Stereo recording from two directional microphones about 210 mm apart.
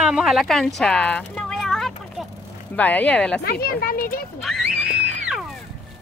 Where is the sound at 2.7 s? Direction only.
5° left (ahead or behind).